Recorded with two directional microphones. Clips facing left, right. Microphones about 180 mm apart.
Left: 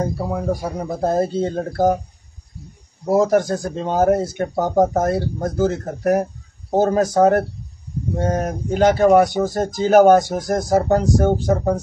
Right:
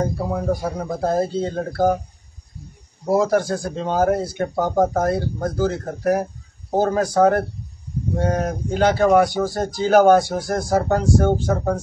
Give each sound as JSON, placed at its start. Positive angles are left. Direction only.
{"t": 0.2, "sound": "speech", "side_deg": 10}
{"t": 3.1, "sound": "speech", "side_deg": 20}
{"t": 8.2, "sound": "speech", "side_deg": 20}